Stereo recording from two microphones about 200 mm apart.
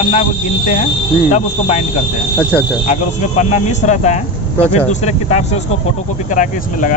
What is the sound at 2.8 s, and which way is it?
Speech, 35° left (ahead or behind).